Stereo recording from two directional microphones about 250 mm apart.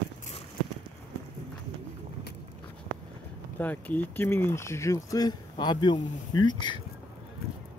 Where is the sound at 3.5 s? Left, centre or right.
Centre.